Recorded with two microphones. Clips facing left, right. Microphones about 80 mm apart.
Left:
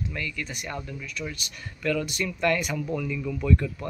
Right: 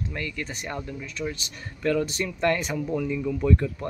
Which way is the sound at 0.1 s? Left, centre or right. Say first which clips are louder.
Right 1 dB; right.